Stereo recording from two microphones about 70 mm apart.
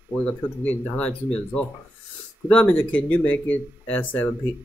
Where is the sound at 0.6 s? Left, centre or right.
Centre.